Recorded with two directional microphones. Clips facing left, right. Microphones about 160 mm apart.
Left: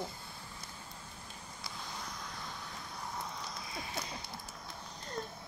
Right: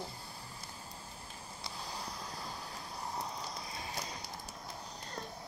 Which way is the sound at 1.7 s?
35° right (ahead or behind).